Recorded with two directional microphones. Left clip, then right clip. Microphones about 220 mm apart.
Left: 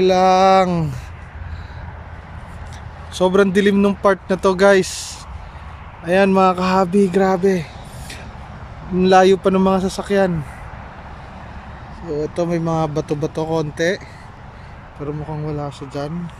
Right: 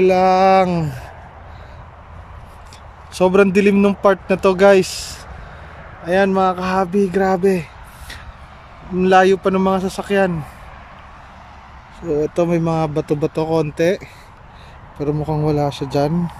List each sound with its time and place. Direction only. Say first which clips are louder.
0.0 s speech: even; centre (ahead or behind)
3.2 s speech: right 2 dB; 5° right (ahead or behind)
8.9 s speech: even; centre (ahead or behind)
12.1 s speech: right 4 dB; 10° right (ahead or behind)
15.1 s speech: right 11 dB; 20° right (ahead or behind)